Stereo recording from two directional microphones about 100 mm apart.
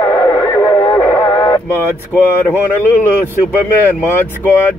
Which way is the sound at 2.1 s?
20° left (ahead or behind).